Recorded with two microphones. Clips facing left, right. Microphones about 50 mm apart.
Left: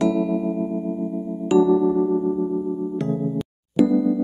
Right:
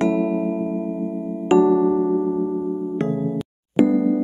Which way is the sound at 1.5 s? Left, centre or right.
Right.